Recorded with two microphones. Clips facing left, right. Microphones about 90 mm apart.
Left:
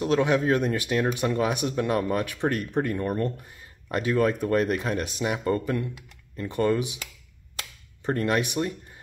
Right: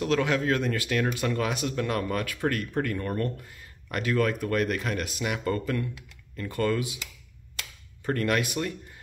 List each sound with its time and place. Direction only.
0.0 s speech: 20° left (ahead or behind)
8.0 s speech: 20° left (ahead or behind)